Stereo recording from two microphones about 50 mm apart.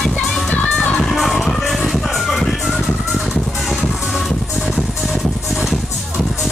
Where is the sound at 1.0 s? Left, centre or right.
Centre.